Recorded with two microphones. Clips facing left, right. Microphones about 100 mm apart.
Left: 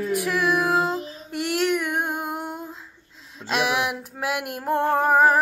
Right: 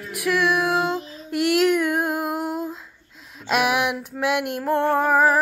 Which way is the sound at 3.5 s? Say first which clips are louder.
Right 3 dB; 5° right (ahead or behind).